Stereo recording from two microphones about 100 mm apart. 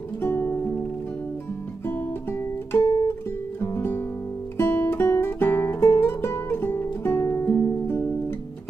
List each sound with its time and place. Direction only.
0.2 s music: 25° left (ahead or behind)
1.9 s guitar: 20° left (ahead or behind)
3.6 s music: 25° left (ahead or behind)